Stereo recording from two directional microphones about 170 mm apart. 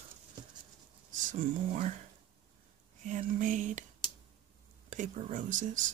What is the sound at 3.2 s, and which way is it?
Speech, 50° right (ahead or behind).